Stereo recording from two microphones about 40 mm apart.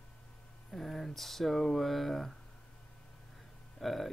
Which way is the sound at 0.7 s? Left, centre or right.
Centre.